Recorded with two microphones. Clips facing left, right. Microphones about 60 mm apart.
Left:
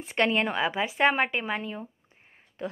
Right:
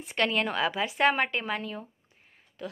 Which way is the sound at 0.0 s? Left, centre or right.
Left.